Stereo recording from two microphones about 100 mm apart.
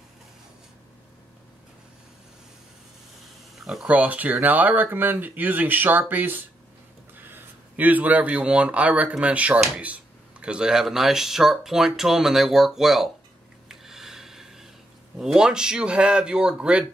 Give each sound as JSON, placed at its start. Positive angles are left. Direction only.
{"t": 3.5, "sound": "speech", "side_deg": -5}
{"t": 13.7, "sound": "a sound", "side_deg": -5}
{"t": 15.1, "sound": "speech", "side_deg": -5}